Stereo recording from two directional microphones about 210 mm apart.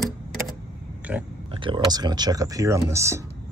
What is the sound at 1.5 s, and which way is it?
Speech, 25° right (ahead or behind).